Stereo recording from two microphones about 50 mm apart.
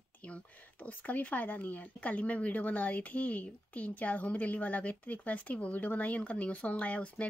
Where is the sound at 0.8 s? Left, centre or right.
Left.